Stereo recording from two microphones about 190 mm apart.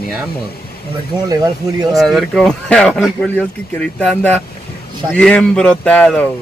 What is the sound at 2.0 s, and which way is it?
Speech, centre (ahead or behind).